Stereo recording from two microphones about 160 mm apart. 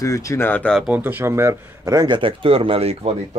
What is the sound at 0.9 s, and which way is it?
Speech, 10° right (ahead or behind).